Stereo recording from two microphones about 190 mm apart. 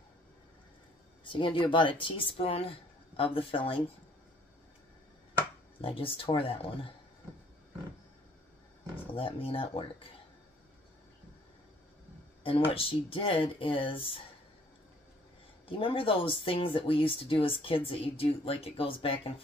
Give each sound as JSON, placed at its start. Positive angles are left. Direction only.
{"t": 1.2, "sound": "speech", "side_deg": 25}
{"t": 5.8, "sound": "speech", "side_deg": 30}
{"t": 9.1, "sound": "speech", "side_deg": 30}
{"t": 12.4, "sound": "speech", "side_deg": 30}
{"t": 15.6, "sound": "speech", "side_deg": 30}